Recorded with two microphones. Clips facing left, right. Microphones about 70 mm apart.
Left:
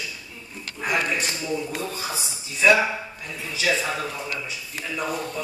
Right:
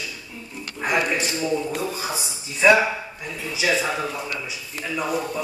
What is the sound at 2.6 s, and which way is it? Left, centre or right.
A man's voice, right.